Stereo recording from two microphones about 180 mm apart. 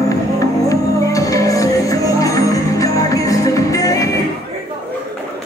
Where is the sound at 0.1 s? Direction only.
20° left (ahead or behind).